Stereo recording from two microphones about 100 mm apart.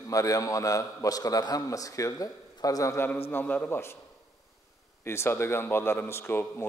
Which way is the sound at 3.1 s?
20° left (ahead or behind).